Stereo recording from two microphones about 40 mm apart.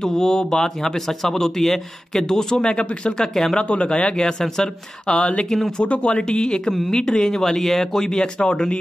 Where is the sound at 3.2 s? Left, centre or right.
Centre.